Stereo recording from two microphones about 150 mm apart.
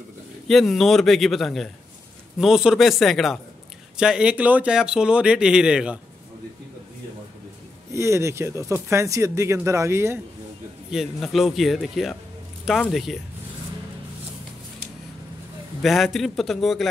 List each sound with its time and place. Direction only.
0.5 s speech: centre (ahead or behind)
7.9 s speech: 20° right (ahead or behind)
10.9 s speech: centre (ahead or behind)
15.8 s speech: centre (ahead or behind)